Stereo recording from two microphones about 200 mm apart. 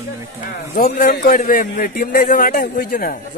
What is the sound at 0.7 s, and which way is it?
A man's voice, 45° left (ahead or behind).